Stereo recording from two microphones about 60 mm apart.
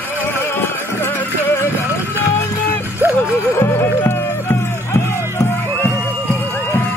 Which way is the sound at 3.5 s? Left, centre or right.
Left.